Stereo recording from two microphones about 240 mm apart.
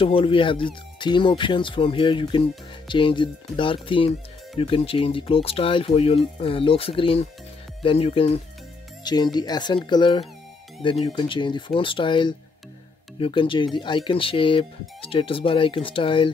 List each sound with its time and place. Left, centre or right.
0.0 s speech: left